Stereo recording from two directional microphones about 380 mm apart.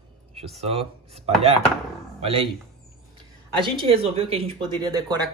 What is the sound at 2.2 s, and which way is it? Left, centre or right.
Speech, centre.